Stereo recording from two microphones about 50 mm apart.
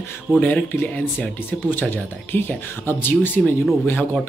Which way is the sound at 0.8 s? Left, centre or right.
Left.